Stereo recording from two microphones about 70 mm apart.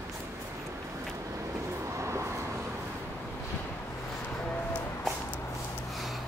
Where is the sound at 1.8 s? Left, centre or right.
Right.